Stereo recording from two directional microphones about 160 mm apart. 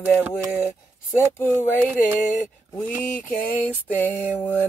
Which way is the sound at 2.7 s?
10° left (ahead or behind).